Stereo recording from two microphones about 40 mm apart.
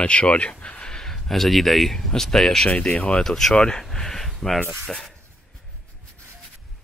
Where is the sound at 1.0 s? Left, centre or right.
Centre.